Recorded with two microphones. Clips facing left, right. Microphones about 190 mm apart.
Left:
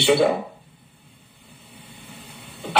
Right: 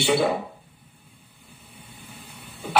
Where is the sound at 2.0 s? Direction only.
25° left (ahead or behind).